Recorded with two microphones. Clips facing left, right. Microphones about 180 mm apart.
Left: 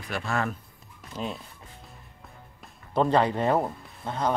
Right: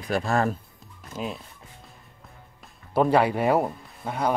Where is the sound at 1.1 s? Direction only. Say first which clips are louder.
Right 1 dB; centre (ahead or behind).